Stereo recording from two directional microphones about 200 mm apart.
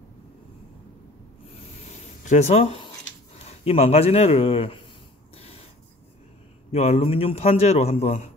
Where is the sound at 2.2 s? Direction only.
35° left (ahead or behind).